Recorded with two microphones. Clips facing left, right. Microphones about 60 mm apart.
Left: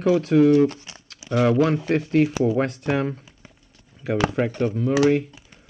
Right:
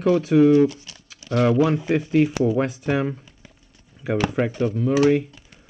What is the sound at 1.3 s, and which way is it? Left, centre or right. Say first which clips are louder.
Speech: even; centre.